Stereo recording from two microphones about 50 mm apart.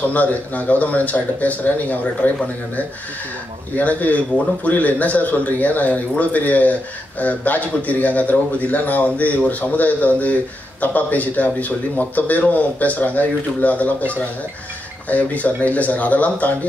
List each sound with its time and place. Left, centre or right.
0.1 s speech: left
3.7 s speech: left